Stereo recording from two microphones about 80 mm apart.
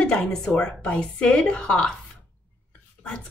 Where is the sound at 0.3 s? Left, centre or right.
Centre.